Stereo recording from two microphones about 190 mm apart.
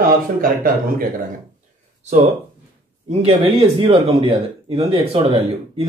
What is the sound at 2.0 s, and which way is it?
Speech, 35° right (ahead or behind).